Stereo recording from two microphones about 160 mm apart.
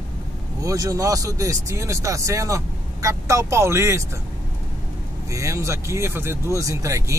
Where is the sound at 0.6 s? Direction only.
20° right (ahead or behind).